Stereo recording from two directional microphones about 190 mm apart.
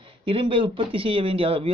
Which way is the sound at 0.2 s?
30° right (ahead or behind).